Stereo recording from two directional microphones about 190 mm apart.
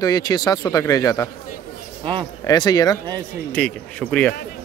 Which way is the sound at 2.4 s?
20° left (ahead or behind).